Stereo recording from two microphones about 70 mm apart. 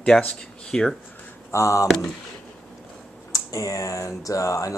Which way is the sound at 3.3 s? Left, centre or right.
Left.